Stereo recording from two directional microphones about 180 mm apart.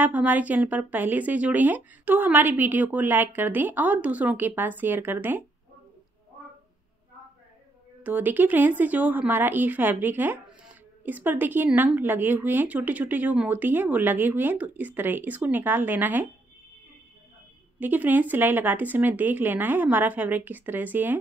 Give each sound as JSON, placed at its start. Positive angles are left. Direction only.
{"t": 0.0, "sound": "a woman's voice", "side_deg": -10}
{"t": 8.0, "sound": "a woman's voice", "side_deg": -10}
{"t": 17.7, "sound": "a woman's voice", "side_deg": -10}